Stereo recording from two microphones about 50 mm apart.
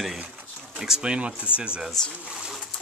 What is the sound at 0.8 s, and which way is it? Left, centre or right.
Speech, centre.